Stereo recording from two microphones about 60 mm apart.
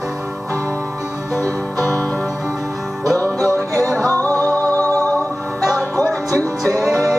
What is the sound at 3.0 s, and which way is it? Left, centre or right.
Music, right.